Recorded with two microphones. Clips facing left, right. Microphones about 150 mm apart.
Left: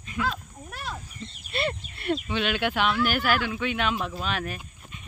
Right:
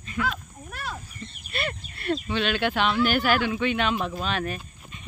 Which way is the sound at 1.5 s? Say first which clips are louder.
Left 3 dB; 25° left (ahead or behind).